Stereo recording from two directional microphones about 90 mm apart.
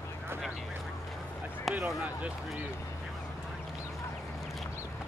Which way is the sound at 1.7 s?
Centre (ahead or behind).